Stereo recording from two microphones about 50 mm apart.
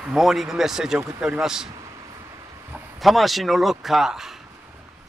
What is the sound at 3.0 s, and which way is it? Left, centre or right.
Speech, centre.